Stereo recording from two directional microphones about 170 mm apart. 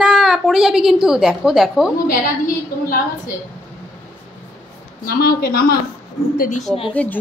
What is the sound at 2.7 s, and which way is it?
Speech, 60° left (ahead or behind).